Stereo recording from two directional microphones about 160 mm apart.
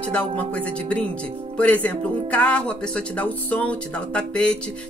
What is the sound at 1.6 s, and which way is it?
Speech, 10° left (ahead or behind).